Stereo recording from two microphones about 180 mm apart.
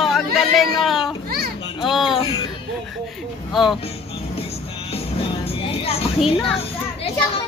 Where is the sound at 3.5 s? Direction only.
Centre (ahead or behind).